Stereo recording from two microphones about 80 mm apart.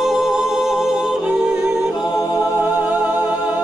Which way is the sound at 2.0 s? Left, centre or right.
Left.